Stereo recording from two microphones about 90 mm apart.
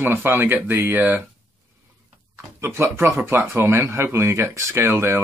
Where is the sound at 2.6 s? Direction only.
25° right (ahead or behind).